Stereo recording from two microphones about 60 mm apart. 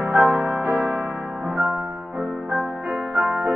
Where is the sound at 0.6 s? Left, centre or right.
Right.